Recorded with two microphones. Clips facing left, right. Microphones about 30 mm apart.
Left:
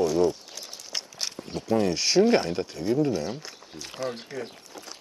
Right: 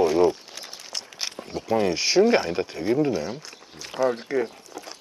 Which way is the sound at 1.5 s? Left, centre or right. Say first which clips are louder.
Right 2 dB; centre.